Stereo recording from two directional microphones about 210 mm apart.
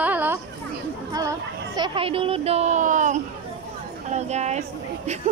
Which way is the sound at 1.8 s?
25° right (ahead or behind).